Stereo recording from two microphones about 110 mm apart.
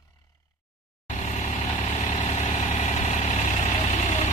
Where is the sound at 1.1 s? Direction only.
90° left.